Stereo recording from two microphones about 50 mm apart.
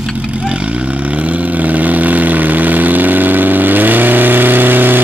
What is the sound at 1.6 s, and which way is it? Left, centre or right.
Vehicle, right.